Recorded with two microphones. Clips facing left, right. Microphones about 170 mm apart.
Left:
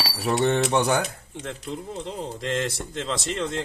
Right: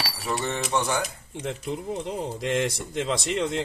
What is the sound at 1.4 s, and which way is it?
Speech, 15° right (ahead or behind).